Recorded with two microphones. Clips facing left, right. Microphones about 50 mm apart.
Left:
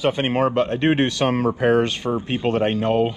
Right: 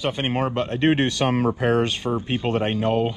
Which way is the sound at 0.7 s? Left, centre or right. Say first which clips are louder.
Left 1 dB; left.